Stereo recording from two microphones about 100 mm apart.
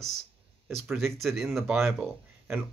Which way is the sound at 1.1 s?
Centre (ahead or behind).